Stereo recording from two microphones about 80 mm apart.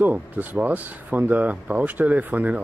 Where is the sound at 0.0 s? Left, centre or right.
Right.